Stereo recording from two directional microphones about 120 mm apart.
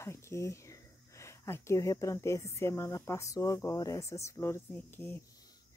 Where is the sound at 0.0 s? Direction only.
25° left (ahead or behind).